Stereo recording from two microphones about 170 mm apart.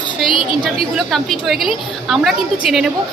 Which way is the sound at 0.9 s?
Centre (ahead or behind).